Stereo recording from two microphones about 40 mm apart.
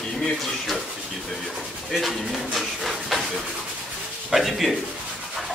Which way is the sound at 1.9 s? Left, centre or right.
Centre.